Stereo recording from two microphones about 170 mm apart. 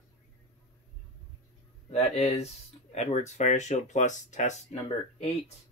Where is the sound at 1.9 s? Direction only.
40° left (ahead or behind).